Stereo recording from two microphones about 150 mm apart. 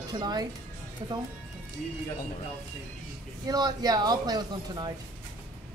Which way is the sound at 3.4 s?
25° right (ahead or behind).